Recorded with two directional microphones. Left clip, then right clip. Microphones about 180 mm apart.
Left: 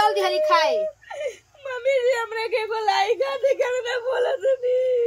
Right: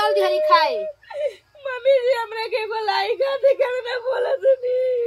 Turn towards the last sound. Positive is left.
turn(degrees=5)  # may be behind; listen again after turning